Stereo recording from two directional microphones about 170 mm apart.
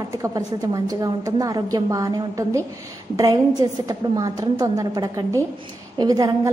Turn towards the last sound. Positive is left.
turn(degrees=-20)  # may be behind; listen again after turning